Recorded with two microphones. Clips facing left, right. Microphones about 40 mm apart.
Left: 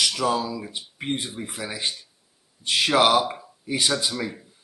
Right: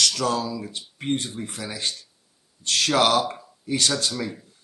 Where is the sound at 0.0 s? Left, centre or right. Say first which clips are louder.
Even; centre.